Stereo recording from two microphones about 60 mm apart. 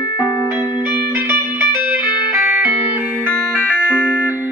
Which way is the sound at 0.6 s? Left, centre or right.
Right.